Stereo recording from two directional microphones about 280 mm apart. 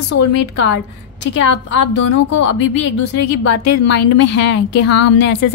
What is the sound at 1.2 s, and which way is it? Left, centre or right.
A woman's voice, left.